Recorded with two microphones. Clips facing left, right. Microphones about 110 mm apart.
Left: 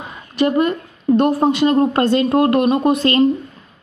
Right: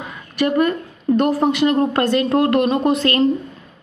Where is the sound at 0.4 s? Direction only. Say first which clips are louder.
Left 1 dB; 25° left (ahead or behind).